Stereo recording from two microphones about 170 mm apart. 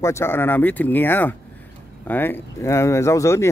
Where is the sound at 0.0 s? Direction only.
15° left (ahead or behind).